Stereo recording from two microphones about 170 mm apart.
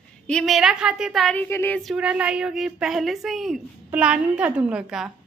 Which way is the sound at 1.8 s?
5° right (ahead or behind).